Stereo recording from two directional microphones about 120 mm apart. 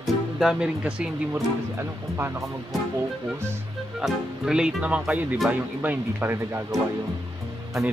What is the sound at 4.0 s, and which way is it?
Speech, 5° right (ahead or behind).